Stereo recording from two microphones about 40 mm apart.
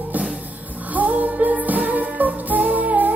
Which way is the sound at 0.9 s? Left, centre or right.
Right.